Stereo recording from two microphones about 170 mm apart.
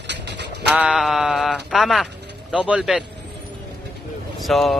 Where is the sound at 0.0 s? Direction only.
90° right.